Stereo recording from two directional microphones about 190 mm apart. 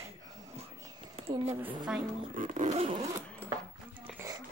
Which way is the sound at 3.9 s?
10° right (ahead or behind).